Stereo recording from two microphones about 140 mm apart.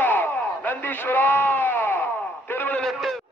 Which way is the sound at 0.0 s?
10° left (ahead or behind).